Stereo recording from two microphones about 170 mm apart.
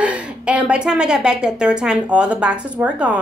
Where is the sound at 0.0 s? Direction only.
5° right (ahead or behind).